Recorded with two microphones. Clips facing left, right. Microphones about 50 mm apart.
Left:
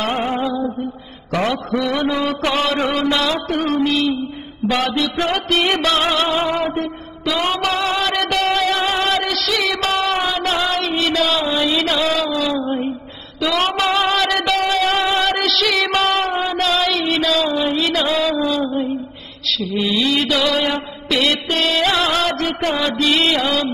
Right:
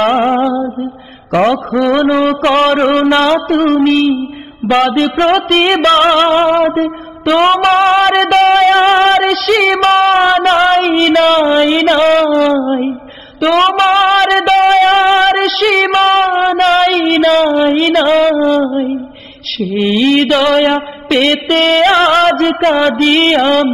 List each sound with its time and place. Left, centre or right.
0.0 s music: right
1.3 s mantra: right
13.4 s music: right
19.6 s mantra: right